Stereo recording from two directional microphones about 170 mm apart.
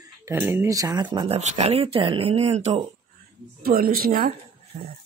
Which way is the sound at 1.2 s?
40° right (ahead or behind).